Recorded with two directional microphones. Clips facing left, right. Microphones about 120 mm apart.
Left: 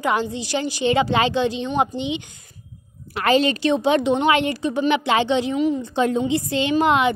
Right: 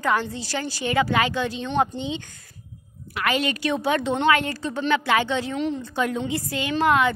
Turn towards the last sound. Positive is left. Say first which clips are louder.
# left 2 dB
turn(degrees=20)  # may be behind; listen again after turning